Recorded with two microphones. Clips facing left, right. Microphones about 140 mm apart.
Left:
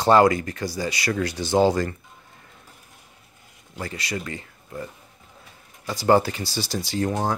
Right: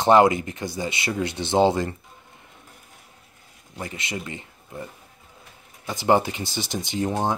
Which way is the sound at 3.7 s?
20° right (ahead or behind).